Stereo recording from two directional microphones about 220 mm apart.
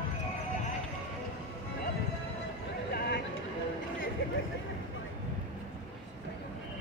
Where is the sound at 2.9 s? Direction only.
45° left (ahead or behind).